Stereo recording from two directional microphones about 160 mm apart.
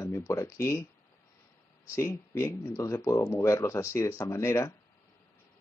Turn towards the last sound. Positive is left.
turn(degrees=20)  # may be behind; listen again after turning